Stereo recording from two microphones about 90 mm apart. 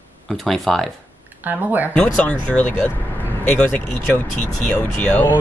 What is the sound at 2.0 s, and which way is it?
Speech, 15° left (ahead or behind).